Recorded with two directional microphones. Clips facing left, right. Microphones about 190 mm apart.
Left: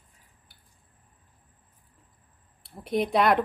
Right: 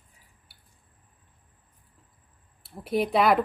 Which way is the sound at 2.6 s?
5° right (ahead or behind).